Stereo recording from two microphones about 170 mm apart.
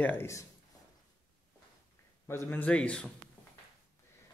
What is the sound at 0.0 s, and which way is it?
Speech, 15° left (ahead or behind).